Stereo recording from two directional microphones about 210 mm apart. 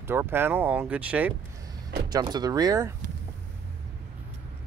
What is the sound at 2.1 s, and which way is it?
Speech, 20° right (ahead or behind).